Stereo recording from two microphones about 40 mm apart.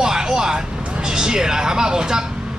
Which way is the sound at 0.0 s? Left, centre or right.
Centre.